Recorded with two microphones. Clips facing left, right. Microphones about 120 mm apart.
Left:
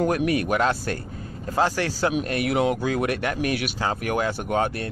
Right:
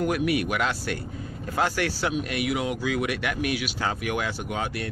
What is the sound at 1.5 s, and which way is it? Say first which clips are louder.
Speech: left 3 dB; 30° left (ahead or behind).